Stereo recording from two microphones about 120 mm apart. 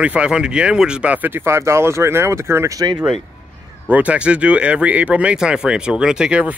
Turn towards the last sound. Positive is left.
turn(degrees=-5)  # may be behind; listen again after turning